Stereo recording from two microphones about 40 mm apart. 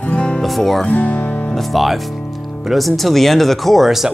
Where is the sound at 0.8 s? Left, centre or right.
Left.